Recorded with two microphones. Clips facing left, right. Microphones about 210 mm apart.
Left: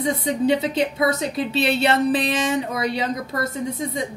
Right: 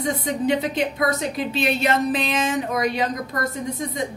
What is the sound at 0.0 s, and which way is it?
A woman's voice, 25° left (ahead or behind).